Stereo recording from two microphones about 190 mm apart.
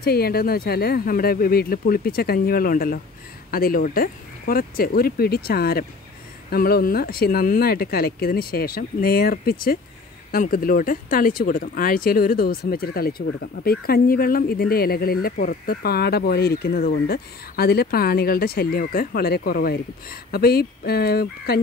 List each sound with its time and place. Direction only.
0.0 s speech: 55° left (ahead or behind)